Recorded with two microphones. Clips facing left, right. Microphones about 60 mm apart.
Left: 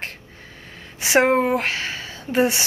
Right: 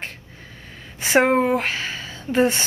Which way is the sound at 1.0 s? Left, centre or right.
Centre.